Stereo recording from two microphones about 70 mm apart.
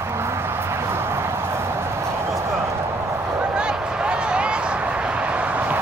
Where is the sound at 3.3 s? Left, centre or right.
Centre.